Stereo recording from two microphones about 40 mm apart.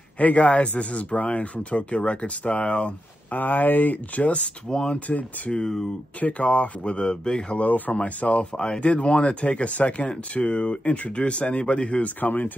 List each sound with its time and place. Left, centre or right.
0.2 s speech: left
3.3 s speech: left
4.2 s speech: left
4.6 s speech: left
6.2 s speech: left
7.5 s speech: left
8.5 s speech: centre
8.8 s speech: left
12.2 s speech: left